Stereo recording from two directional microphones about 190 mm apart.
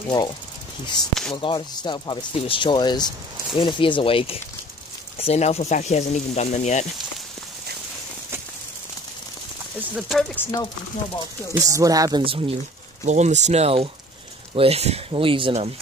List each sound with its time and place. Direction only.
1.3 s speech: 25° left (ahead or behind)
9.8 s speech: 5° right (ahead or behind)
10.3 s speech: 15° left (ahead or behind)
11.5 s speech: 15° right (ahead or behind)